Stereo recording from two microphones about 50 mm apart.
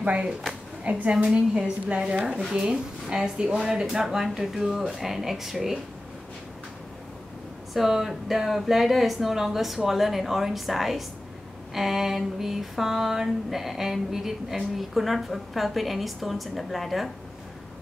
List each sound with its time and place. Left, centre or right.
0.0 s a woman's voice: right
1.2 s a woman's voice: centre
7.7 s a sound: centre